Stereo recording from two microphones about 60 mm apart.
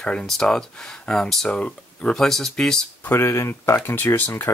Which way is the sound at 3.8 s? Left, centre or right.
Left.